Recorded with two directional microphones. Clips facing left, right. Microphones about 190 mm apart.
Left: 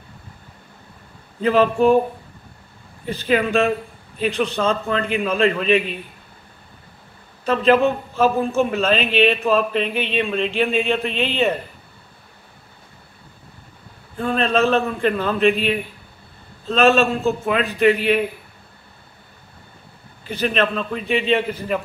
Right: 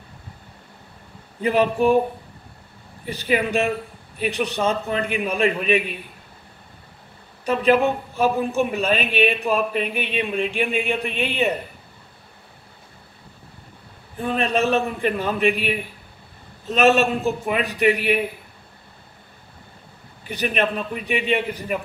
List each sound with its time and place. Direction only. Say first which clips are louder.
1.4 s a man's voice: left 3 dB; 15° right (ahead or behind)
3.1 s a man's voice: left 3 dB; 15° right (ahead or behind)
7.4 s a man's voice: left 2 dB; 15° right (ahead or behind)
14.1 s a man's voice: left 3 dB; 15° right (ahead or behind)
20.2 s a man's voice: left 2 dB; 15° right (ahead or behind)